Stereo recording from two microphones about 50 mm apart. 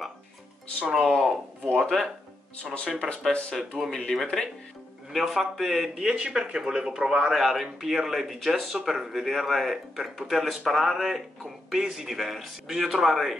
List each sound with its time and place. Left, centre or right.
0.8 s speech: centre
1.6 s speech: centre
3.5 s speech: centre
5.9 s speech: centre
7.3 s speech: centre